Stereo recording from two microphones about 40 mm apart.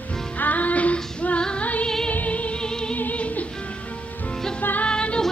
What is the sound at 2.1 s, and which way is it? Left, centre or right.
Music, left.